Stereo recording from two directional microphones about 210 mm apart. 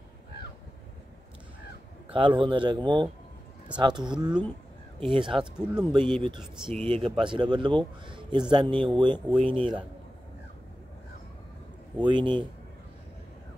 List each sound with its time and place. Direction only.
2.0 s speech: 25° right (ahead or behind)
5.4 s speech: 5° right (ahead or behind)
5.9 s speech: 25° right (ahead or behind)
12.0 s speech: 20° right (ahead or behind)